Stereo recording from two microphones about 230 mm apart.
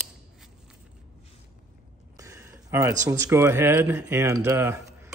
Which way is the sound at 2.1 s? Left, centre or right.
Centre.